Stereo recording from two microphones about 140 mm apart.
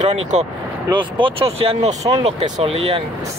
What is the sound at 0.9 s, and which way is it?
Speech, 40° right (ahead or behind).